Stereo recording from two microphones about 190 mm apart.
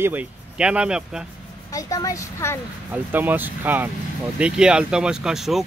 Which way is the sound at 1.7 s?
20° left (ahead or behind).